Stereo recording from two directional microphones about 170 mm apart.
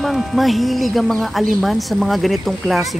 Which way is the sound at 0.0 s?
Centre (ahead or behind).